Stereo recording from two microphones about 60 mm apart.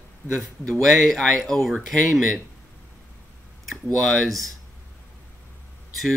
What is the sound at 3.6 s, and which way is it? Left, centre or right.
Speech, centre.